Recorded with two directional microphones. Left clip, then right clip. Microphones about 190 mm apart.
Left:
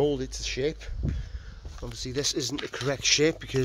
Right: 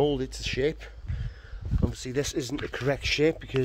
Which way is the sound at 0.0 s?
20° right (ahead or behind).